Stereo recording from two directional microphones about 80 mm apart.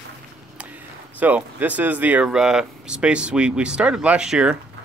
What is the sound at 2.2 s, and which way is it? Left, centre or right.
Speech, centre.